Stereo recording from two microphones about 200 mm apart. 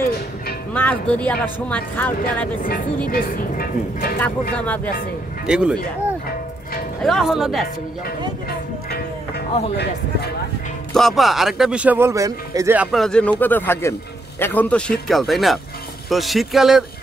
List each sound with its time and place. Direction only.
0.7 s speech: 10° left (ahead or behind)
3.1 s speech: 45° left (ahead or behind)
4.2 s speech: 10° left (ahead or behind)
5.5 s speech: 5° right (ahead or behind)
7.0 s speech: centre (ahead or behind)
10.9 s speech: centre (ahead or behind); by 12.7 s 15° right (ahead or behind)
12.7 s speech: 5° right (ahead or behind)